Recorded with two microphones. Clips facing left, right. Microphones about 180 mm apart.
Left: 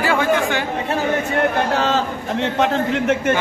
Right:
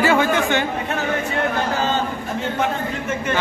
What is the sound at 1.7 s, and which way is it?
A man's voice, 75° left (ahead or behind).